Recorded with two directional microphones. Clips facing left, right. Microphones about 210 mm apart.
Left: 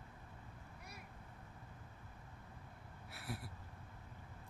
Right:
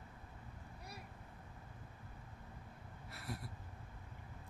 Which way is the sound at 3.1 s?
Centre (ahead or behind).